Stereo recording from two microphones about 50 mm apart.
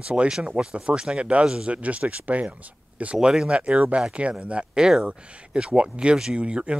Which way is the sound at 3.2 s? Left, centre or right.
Centre.